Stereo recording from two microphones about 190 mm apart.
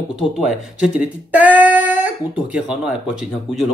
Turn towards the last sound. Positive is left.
turn(degrees=-5)  # may be behind; listen again after turning